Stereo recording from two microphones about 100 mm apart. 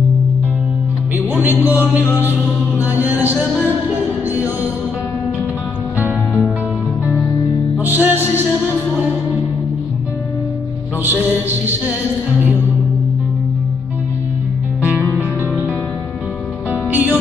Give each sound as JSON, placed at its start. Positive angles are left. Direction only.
{"t": 1.1, "sound": "music", "side_deg": -20}
{"t": 5.9, "sound": "music", "side_deg": -15}
{"t": 7.8, "sound": "music", "side_deg": -20}
{"t": 14.8, "sound": "music", "side_deg": -15}
{"t": 16.9, "sound": "music", "side_deg": -20}